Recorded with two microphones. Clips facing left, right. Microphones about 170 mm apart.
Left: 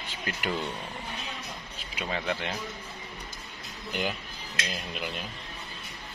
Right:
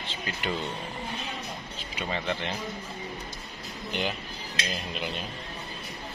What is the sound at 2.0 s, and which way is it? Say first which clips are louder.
Speech: even; centre (ahead or behind).